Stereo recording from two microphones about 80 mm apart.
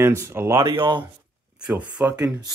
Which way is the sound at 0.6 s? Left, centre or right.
Right.